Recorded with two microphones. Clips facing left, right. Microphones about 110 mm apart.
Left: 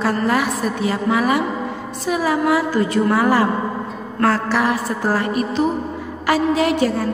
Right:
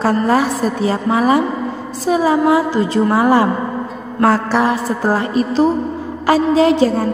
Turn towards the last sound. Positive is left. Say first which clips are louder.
# right 5 dB
turn(degrees=-30)  # may be behind; listen again after turning